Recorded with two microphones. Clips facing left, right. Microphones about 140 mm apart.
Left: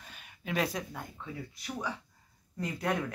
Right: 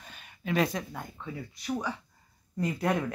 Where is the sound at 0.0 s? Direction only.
5° left (ahead or behind).